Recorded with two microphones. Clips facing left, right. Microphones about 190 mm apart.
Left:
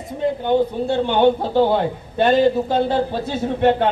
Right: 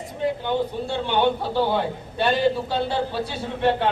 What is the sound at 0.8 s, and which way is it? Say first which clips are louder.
A man's voice: left 5 dB; 45° left (ahead or behind).